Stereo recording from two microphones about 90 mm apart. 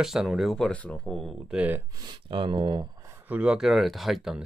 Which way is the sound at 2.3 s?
65° right (ahead or behind).